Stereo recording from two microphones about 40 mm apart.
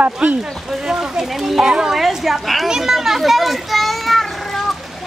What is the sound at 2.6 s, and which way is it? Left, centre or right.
Children playing, centre.